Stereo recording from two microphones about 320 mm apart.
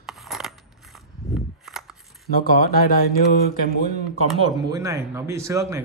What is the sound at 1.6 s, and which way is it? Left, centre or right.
Shuffling cards, centre.